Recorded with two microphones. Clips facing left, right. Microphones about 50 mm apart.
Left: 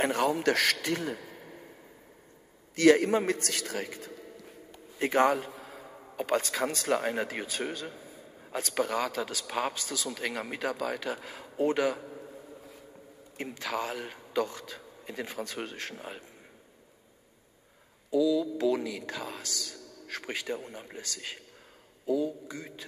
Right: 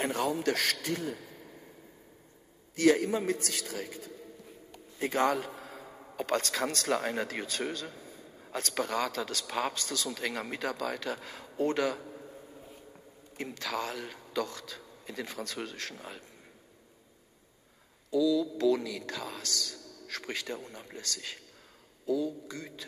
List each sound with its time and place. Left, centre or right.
0.0 s a man's voice: left
1.1 s a sound: left
2.7 s a man's voice: left
4.9 s a man's voice: left
5.6 s a sound: centre
6.2 s a man's voice: centre
13.4 s a man's voice: centre
18.1 s a man's voice: centre